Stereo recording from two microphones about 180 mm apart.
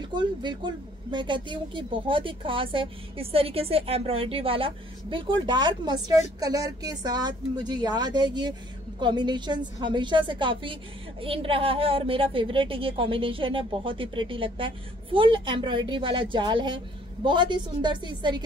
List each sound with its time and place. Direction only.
0.0 s speech: 25° right (ahead or behind)